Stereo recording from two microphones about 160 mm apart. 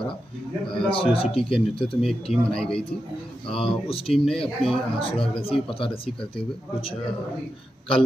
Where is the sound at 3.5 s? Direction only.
35° left (ahead or behind).